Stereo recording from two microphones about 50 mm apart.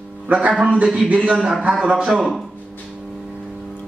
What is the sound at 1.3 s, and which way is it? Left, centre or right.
Speech, centre.